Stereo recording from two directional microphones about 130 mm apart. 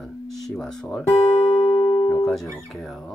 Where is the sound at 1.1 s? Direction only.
55° left (ahead or behind).